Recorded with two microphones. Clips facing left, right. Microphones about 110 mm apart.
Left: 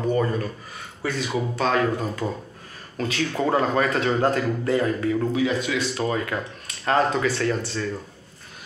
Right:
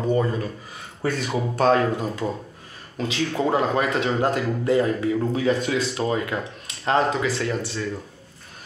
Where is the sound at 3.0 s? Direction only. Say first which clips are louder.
Right 1 dB; 20° right (ahead or behind).